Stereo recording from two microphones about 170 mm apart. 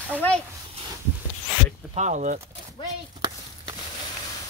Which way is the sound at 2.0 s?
45° right (ahead or behind).